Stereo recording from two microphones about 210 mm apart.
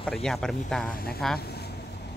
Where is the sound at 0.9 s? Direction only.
45° left (ahead or behind).